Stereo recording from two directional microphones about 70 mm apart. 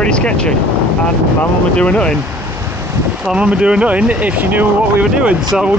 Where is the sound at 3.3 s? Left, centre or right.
Centre.